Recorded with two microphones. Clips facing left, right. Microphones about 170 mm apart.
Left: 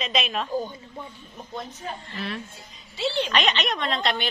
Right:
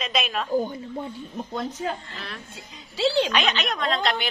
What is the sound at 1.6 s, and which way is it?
Speech, 90° right.